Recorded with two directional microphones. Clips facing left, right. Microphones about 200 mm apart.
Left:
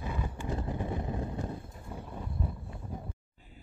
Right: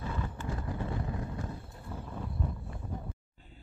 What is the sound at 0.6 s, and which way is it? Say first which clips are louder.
Vehicle: left 1 dB; 20° left (ahead or behind).